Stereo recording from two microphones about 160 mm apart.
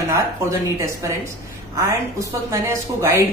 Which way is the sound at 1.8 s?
20° right (ahead or behind).